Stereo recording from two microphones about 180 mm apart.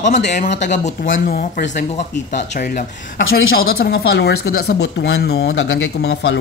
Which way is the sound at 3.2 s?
60° left (ahead or behind).